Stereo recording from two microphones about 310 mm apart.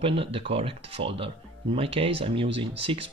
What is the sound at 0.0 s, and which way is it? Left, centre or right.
Speech, centre.